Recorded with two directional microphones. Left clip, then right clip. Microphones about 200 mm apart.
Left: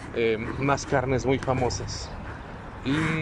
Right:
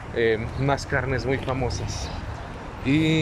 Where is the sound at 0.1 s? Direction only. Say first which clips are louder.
Right 3 dB; 5° left (ahead or behind).